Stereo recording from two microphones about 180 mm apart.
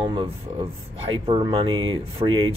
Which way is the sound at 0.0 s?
30° right (ahead or behind).